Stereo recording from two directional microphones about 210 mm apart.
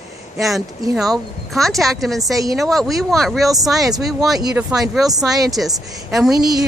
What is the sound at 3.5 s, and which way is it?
Speech, 15° right (ahead or behind).